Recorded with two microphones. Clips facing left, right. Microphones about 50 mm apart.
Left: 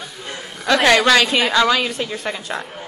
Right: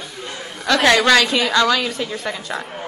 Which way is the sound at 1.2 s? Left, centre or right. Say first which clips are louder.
Left 1 dB; left.